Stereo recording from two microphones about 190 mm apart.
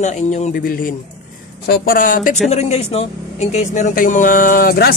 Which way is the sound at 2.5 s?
35° left (ahead or behind).